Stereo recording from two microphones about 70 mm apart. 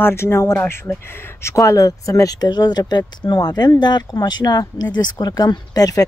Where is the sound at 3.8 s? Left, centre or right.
Left.